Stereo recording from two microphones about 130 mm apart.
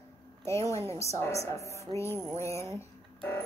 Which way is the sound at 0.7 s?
20° left (ahead or behind).